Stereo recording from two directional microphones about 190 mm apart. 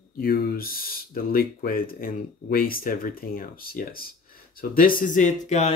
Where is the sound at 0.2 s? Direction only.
50° left (ahead or behind).